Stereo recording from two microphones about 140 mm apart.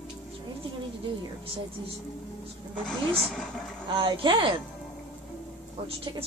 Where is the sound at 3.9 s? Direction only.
35° right (ahead or behind).